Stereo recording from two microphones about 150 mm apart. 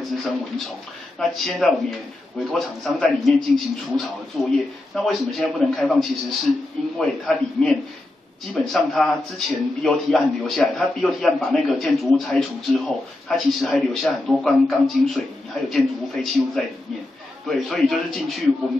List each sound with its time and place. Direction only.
1.2 s a man's voice: centre (ahead or behind)